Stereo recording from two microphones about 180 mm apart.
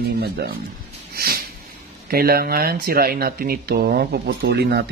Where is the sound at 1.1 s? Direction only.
60° right (ahead or behind).